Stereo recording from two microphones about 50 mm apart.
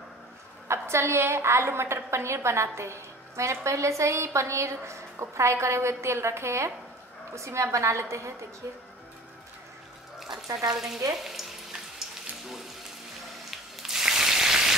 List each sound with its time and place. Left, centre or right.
0.7 s a woman's voice: right
7.3 s a woman's voice: right
10.7 s stir: centre
11.2 s frying: centre
13.5 s a sound: centre